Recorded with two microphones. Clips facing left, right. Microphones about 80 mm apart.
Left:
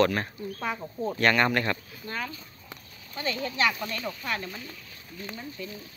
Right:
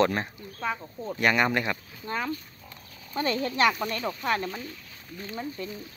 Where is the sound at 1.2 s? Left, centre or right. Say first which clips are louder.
Even; centre.